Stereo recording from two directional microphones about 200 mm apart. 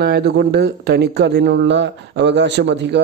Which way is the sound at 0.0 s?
55° right (ahead or behind).